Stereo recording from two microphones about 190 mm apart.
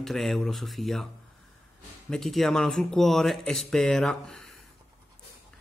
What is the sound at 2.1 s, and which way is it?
Speech, centre (ahead or behind).